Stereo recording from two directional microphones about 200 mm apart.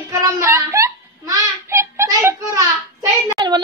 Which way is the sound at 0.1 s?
15° right (ahead or behind).